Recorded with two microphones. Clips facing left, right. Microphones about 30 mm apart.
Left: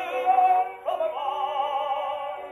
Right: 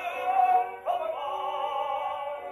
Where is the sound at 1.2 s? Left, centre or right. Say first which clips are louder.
Left 4 dB; centre.